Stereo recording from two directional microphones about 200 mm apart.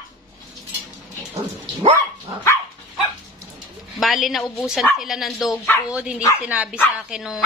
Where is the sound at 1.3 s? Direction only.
30° right (ahead or behind).